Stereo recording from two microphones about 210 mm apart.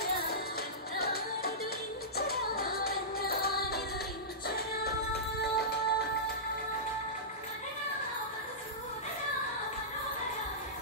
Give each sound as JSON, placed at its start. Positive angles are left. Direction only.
{"t": 0.0, "sound": "music", "side_deg": 50}